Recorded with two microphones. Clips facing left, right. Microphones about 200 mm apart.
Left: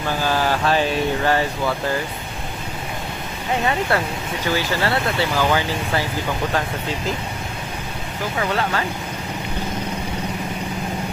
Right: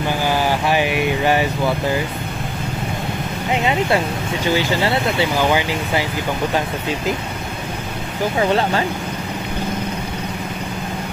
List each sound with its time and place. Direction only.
0.2 s speech: 15° right (ahead or behind)
3.5 s speech: 20° right (ahead or behind)
8.4 s speech: 25° right (ahead or behind)